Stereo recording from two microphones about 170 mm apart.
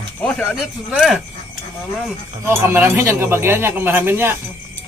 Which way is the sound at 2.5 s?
15° right (ahead or behind).